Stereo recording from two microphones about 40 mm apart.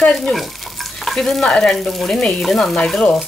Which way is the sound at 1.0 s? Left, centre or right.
Centre.